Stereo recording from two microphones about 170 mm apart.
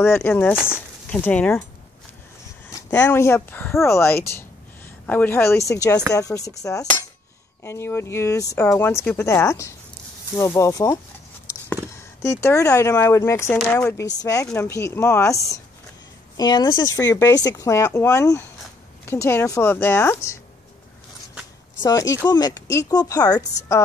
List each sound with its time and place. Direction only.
0.0 s speech: 15° left (ahead or behind)
2.7 s speech: 20° left (ahead or behind)
21.8 s speech: 20° left (ahead or behind)